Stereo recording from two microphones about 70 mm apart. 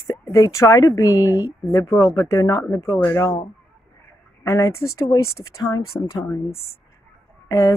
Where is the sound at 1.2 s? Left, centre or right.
Right.